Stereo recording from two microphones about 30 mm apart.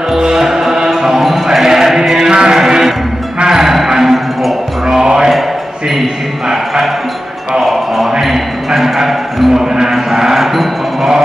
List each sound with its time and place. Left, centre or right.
0.2 s music: centre
1.3 s chant: centre
3.4 s a sound: centre
4.8 s music: right
6.5 s music: centre
7.6 s a sound: centre
10.4 s chime: centre